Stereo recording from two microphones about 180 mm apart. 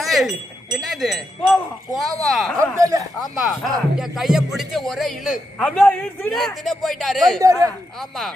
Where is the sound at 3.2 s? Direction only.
Centre (ahead or behind).